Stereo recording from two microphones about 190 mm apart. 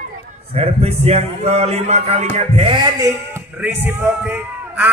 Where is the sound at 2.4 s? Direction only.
30° right (ahead or behind).